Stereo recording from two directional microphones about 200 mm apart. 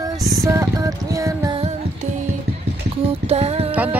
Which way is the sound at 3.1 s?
30° right (ahead or behind).